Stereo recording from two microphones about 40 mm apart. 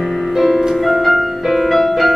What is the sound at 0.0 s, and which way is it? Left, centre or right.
Music, centre.